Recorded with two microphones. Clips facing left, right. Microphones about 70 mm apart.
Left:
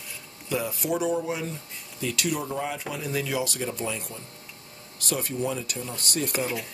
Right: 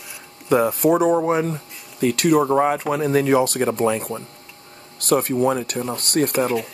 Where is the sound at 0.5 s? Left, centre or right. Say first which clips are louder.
Right 11 dB; right.